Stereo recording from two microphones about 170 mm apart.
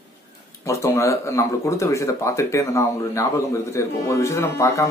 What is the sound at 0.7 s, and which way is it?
Speech, 15° left (ahead or behind).